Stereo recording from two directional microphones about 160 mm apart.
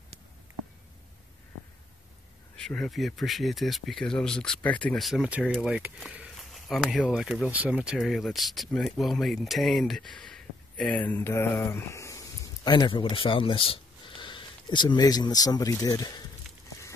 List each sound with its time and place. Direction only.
2.5 s speech: 5° left (ahead or behind); by 16.3 s 25° left (ahead or behind)